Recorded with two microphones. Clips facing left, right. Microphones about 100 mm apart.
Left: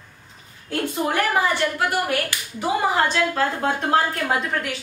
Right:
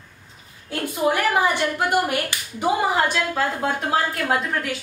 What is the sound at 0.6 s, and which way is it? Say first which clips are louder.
Speech: right 2 dB; 10° right (ahead or behind).